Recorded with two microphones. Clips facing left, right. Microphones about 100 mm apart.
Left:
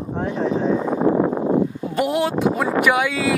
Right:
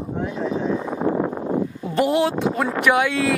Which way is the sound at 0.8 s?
70° left (ahead or behind).